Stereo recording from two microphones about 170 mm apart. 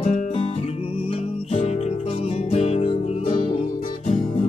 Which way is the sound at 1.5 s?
40° left (ahead or behind).